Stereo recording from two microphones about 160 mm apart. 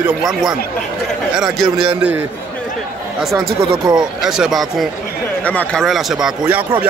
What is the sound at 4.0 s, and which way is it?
A man's voice, 5° right (ahead or behind).